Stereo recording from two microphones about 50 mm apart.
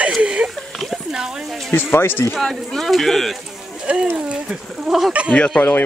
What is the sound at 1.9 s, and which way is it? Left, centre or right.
Speech, left.